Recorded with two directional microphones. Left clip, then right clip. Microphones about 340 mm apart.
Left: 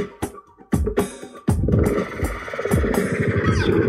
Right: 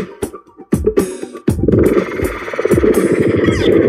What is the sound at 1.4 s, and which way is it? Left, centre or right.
Music, right.